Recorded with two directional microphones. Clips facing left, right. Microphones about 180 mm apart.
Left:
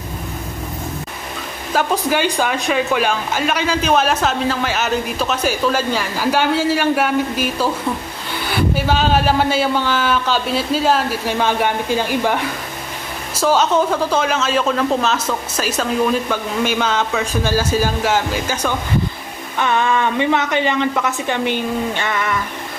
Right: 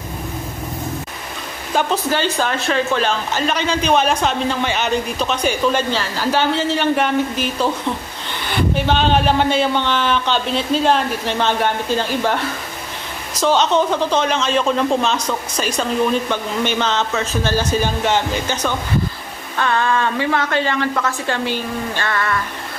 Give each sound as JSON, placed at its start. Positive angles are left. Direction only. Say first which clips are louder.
{"t": 1.7, "sound": "speech", "louder": "left 1 dB", "side_deg": 5}